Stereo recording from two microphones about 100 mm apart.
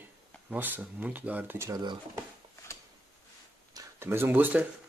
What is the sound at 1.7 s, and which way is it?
Speech, 50° right (ahead or behind).